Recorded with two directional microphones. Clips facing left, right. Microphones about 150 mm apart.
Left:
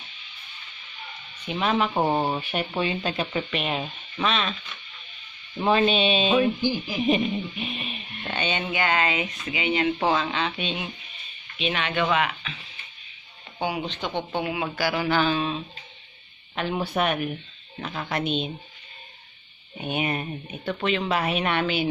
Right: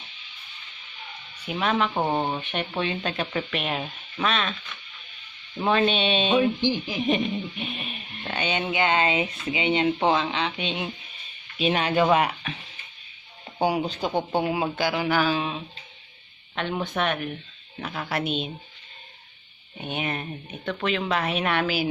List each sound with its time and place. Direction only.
1.4 s speech: centre (ahead or behind)
5.6 s speech: 5° left (ahead or behind)
6.3 s speech: 20° right (ahead or behind)
6.9 s speech: centre (ahead or behind)
8.4 s speech: 15° right (ahead or behind)
10.0 s speech: 15° right (ahead or behind)
11.5 s speech: 40° right (ahead or behind)
14.0 s speech: 40° right (ahead or behind)
14.8 s speech: 15° right (ahead or behind)
16.5 s speech: 5° left (ahead or behind)
17.7 s speech: 5° right (ahead or behind)
19.8 s speech: 10° left (ahead or behind)